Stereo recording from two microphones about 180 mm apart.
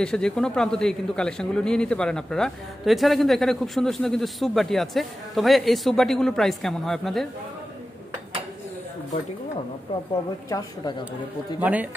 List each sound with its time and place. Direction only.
0.0 s speech: 5° left (ahead or behind)
10.5 s a woman's voice: 25° left (ahead or behind)
11.6 s speech: 10° right (ahead or behind)